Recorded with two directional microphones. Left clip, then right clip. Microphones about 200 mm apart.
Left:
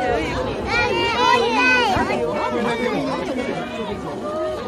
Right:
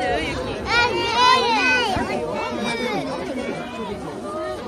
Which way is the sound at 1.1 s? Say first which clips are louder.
Right 2 dB; 35° right (ahead or behind).